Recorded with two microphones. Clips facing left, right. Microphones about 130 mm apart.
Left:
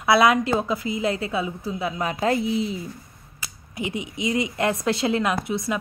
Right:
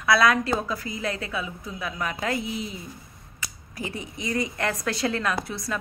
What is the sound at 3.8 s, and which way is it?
Speech, 20° left (ahead or behind).